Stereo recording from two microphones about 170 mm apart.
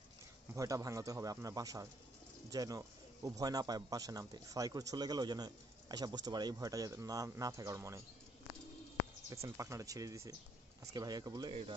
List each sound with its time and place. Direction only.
0.6 s speech: 20° right (ahead or behind)
9.3 s speech: 20° right (ahead or behind)